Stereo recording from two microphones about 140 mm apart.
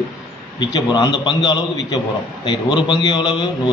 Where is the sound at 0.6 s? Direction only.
30° left (ahead or behind).